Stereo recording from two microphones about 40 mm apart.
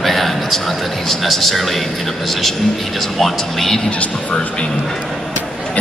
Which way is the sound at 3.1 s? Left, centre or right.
Centre.